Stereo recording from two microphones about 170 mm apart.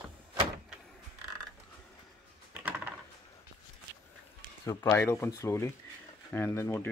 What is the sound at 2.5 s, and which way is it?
Coin, 10° right (ahead or behind).